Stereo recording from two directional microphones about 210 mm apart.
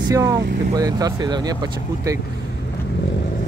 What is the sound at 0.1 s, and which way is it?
Speech, 15° right (ahead or behind).